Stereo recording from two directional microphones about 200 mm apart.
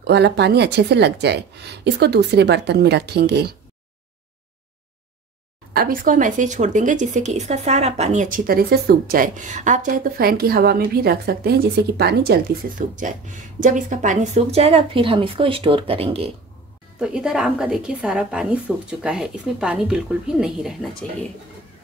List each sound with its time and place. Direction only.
0.0 s a woman's voice: 55° right (ahead or behind)
5.7 s speech: 45° right (ahead or behind); by 16.3 s 30° right (ahead or behind)
17.0 s a woman's voice: 5° right (ahead or behind)